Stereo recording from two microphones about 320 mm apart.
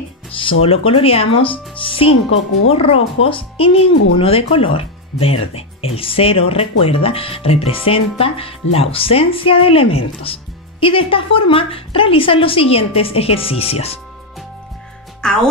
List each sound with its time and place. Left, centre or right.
0.4 s speech: centre
15.2 s speech: centre